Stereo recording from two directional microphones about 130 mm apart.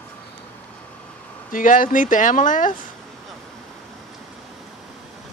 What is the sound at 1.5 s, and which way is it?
Speech, 90° left.